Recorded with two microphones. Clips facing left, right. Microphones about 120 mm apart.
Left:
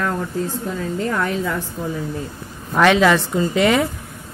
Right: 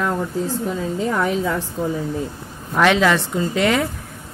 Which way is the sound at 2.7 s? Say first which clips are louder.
Left 2 dB; centre (ahead or behind).